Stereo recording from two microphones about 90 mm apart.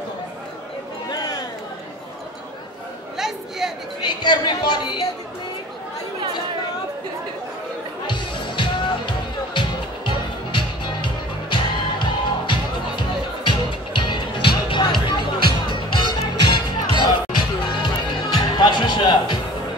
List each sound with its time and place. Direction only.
3.2 s speech: 5° right (ahead or behind)
4.0 s a woman's voice: 55° left (ahead or behind)
8.1 s music: 60° left (ahead or behind)